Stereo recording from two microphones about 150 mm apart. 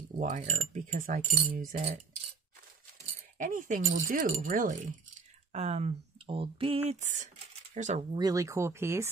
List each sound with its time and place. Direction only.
0.2 s speech: 55° right (ahead or behind)
3.3 s speech: 60° right (ahead or behind)
5.5 s speech: 45° right (ahead or behind)
8.1 s speech: 25° right (ahead or behind)